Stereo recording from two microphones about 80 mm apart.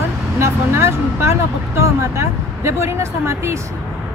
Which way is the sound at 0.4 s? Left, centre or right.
Right.